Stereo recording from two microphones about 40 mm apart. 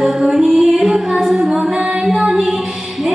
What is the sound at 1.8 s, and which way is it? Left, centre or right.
Music, right.